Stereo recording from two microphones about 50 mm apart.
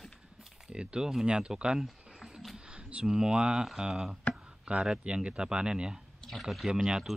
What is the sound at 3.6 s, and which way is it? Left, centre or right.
Speech, centre.